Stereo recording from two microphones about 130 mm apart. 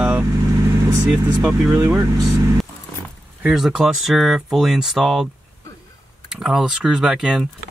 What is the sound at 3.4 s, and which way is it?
Speech, 5° right (ahead or behind).